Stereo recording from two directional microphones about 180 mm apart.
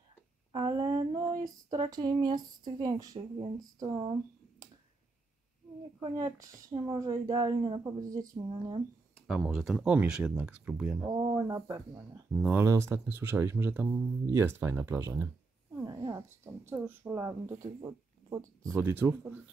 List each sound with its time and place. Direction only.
0.5 s a sound: 25° right (ahead or behind)
3.2 s speech: 25° right (ahead or behind)
5.9 s speech: 20° right (ahead or behind)
9.3 s speech: centre (ahead or behind)
11.1 s speech: 20° right (ahead or behind)
12.3 s speech: centre (ahead or behind)
12.5 s speech: 15° right (ahead or behind)